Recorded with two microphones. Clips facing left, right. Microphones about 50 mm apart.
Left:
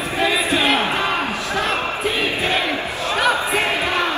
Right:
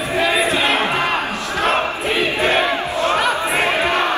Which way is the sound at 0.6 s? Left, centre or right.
Right.